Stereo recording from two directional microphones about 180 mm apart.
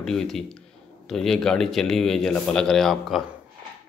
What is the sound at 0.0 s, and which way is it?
Speech, centre (ahead or behind).